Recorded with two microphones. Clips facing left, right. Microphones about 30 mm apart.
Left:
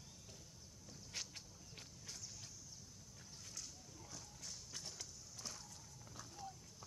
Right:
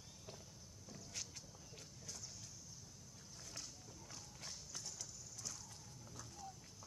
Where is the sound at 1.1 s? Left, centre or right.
Left.